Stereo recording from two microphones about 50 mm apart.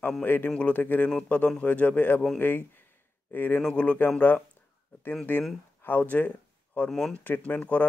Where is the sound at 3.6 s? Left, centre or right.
Centre.